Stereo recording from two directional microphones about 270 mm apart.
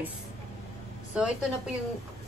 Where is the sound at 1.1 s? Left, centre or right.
Centre.